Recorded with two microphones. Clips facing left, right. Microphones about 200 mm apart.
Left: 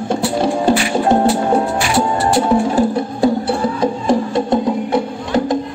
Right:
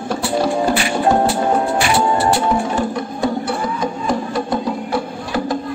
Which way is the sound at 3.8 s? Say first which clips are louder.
Left 5 dB; 25° left (ahead or behind).